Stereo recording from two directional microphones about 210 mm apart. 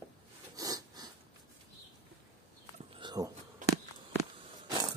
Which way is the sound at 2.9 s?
20° right (ahead or behind).